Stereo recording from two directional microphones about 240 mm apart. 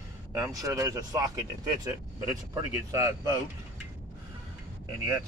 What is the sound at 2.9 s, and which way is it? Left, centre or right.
Speech, centre.